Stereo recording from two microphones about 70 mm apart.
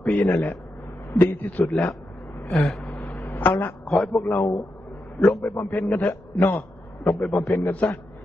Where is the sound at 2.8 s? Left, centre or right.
Left.